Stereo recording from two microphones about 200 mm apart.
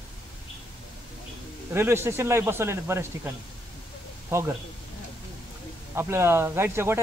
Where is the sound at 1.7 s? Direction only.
10° right (ahead or behind).